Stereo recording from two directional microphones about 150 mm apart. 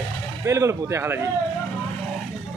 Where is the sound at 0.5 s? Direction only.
20° right (ahead or behind).